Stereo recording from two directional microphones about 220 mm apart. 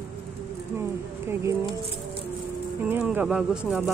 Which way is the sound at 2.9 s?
5° right (ahead or behind).